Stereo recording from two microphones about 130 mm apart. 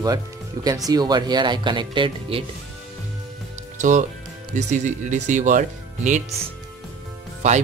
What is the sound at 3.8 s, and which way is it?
Speech, 70° right (ahead or behind).